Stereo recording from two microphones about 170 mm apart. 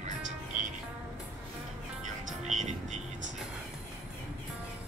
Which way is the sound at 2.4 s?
45° right (ahead or behind).